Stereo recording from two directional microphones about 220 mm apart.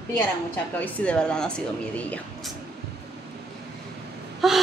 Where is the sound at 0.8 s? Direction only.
5° left (ahead or behind).